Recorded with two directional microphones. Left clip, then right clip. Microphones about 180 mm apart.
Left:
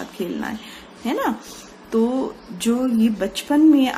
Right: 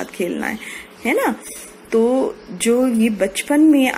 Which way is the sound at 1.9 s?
25° right (ahead or behind).